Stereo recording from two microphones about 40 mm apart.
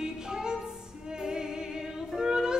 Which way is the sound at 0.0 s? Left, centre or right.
Centre.